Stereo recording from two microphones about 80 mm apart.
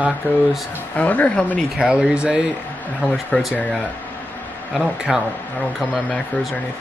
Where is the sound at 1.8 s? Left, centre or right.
Centre.